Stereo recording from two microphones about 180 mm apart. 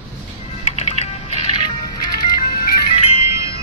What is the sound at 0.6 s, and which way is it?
Music, 35° left (ahead or behind).